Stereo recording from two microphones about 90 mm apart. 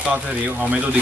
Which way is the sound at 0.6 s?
15° right (ahead or behind).